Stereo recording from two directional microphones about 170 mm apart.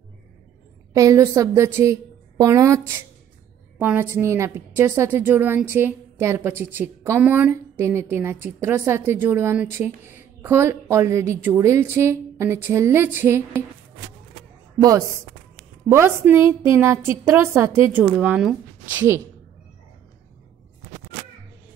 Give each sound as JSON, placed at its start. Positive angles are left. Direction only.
{"t": 0.9, "sound": "a woman's voice", "side_deg": -20}
{"t": 14.8, "sound": "a woman's voice", "side_deg": -20}